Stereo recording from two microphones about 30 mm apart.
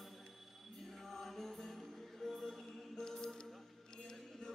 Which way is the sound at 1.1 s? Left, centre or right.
Centre.